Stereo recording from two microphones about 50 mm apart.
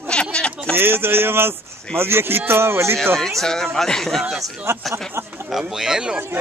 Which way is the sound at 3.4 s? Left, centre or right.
Centre.